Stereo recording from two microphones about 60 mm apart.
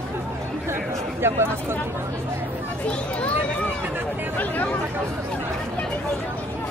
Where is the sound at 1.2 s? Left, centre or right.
Right.